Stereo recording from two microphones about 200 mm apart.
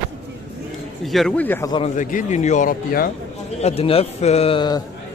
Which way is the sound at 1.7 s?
35° left (ahead or behind).